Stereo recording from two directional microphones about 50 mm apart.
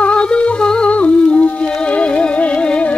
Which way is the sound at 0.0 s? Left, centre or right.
Centre.